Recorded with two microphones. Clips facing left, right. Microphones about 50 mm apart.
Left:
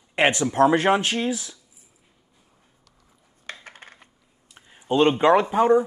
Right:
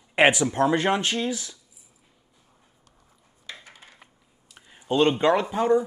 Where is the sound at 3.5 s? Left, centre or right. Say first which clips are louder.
Left 3 dB; left.